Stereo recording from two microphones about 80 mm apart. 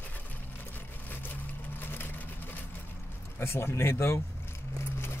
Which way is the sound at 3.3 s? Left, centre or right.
Left.